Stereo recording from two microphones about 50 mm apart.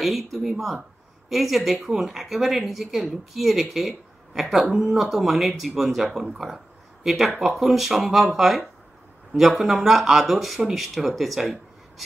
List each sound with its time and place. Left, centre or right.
0.0 s speech: centre